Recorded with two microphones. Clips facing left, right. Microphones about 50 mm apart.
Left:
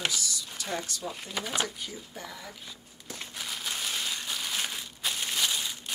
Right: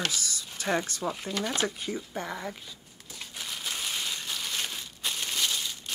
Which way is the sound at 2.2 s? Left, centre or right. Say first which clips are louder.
Right 7 dB; right.